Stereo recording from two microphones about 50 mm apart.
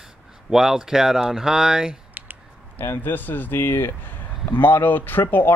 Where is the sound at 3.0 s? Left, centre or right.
Left.